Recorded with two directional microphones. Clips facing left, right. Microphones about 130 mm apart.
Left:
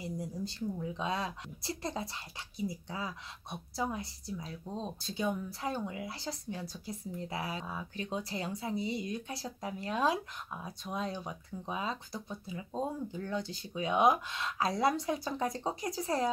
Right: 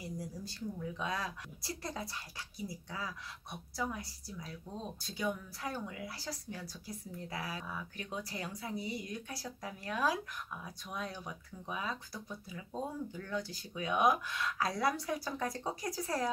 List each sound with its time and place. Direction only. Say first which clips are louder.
0.0 s speech: left 5 dB; 25° left (ahead or behind)